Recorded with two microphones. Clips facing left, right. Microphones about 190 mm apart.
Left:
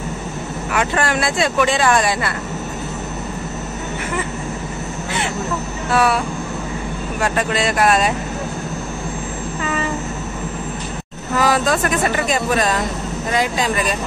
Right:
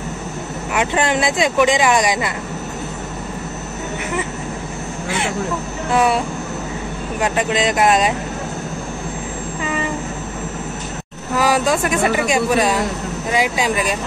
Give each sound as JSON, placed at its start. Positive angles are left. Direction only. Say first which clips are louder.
{"t": 0.7, "sound": "speech", "louder": "right 1 dB", "side_deg": -20}
{"t": 5.9, "sound": "speech", "louder": "right 1 dB", "side_deg": -20}
{"t": 9.6, "sound": "train", "louder": "even", "side_deg": -15}
{"t": 11.3, "sound": "speech", "louder": "even", "side_deg": -10}